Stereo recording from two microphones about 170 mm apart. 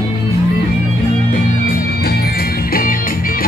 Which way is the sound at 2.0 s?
65° left (ahead or behind).